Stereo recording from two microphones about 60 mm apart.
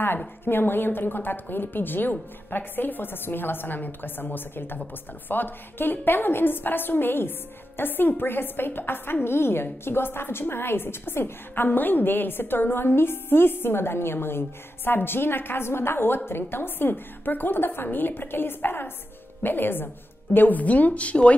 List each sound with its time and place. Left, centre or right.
0.5 s a woman's voice: left